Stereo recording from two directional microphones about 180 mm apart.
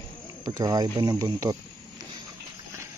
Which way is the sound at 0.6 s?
20° right (ahead or behind).